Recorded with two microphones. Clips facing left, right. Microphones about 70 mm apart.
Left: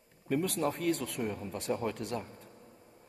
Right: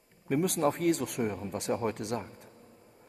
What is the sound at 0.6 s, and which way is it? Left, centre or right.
Speech, right.